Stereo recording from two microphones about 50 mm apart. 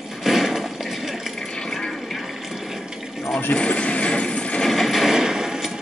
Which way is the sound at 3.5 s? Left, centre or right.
Left.